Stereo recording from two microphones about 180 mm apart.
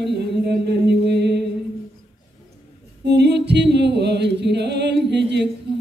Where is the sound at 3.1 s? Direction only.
70° right (ahead or behind).